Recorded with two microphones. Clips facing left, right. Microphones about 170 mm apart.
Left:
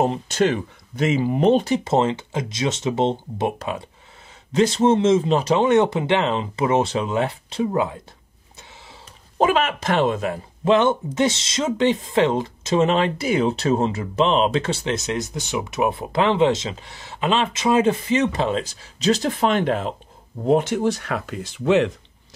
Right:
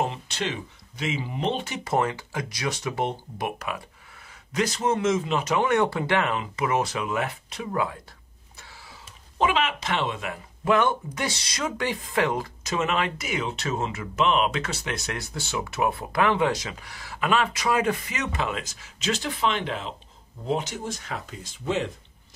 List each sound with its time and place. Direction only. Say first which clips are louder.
0.0 s speech: left 9 dB; 40° left (ahead or behind)
1.9 s speech: left 5 dB; 25° left (ahead or behind)
9.4 s speech: left 5 dB; 45° left (ahead or behind); by 21.9 s 75° left (ahead or behind)